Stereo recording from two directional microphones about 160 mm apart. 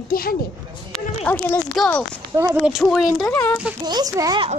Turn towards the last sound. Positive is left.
turn(degrees=-20)  # may be behind; listen again after turning